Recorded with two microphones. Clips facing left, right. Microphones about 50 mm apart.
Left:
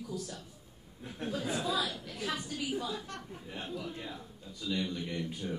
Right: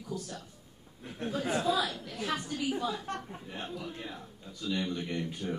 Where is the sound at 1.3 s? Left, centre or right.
Right.